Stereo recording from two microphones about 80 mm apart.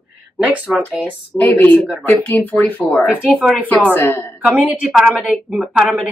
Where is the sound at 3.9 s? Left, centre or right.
Left.